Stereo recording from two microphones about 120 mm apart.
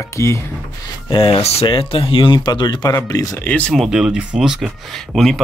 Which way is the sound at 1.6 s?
45° left (ahead or behind).